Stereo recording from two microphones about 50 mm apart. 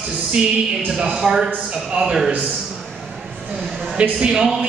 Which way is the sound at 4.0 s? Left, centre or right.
Right.